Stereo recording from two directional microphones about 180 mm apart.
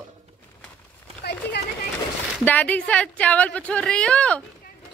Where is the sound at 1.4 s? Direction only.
65° left (ahead or behind).